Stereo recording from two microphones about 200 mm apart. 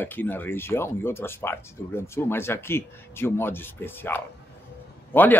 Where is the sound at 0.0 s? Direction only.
10° left (ahead or behind).